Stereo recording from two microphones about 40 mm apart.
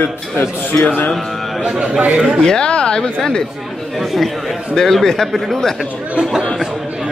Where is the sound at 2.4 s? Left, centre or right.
Centre.